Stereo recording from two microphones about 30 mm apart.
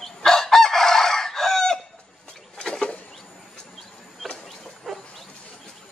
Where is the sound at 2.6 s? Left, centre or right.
Left.